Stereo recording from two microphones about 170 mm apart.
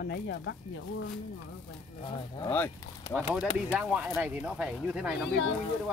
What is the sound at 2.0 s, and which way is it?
Speech, 30° left (ahead or behind).